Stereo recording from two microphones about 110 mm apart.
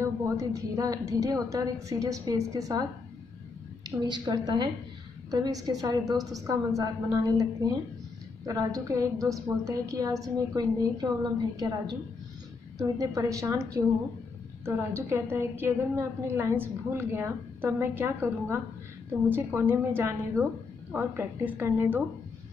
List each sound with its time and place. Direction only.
0.0 s a woman's voice: 30° right (ahead or behind)
4.0 s a woman's voice: 40° right (ahead or behind)
14.6 s a woman's voice: 20° right (ahead or behind)